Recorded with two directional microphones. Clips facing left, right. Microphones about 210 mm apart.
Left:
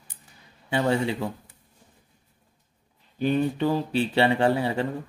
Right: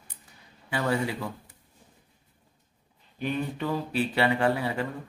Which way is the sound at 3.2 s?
30° left (ahead or behind).